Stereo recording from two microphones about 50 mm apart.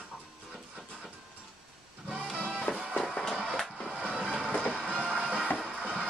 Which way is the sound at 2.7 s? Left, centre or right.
Left.